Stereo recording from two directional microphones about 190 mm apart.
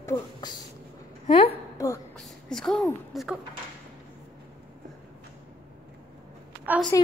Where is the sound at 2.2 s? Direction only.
5° left (ahead or behind).